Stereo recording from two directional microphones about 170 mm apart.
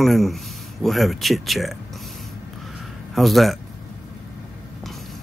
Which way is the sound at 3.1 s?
Centre (ahead or behind).